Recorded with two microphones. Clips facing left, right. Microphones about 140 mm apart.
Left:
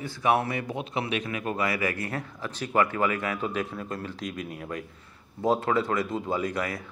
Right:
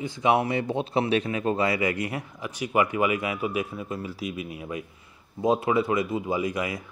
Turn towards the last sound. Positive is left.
turn(degrees=-15)  # may be behind; listen again after turning